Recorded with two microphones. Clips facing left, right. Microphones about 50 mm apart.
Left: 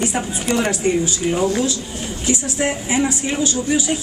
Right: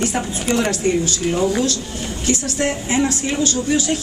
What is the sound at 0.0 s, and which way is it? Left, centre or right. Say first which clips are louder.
A woman's voice: even; centre.